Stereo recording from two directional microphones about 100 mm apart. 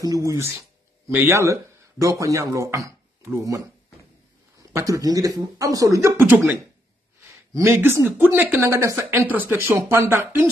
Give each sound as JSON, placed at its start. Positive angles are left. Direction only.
{"t": 0.0, "sound": "speech", "side_deg": -35}
{"t": 6.1, "sound": "speech", "side_deg": -20}